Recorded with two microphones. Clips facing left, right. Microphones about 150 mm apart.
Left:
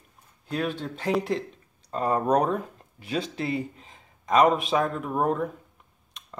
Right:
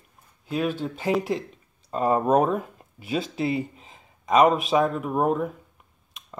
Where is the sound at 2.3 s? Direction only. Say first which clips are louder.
Right 2 dB; 5° right (ahead or behind).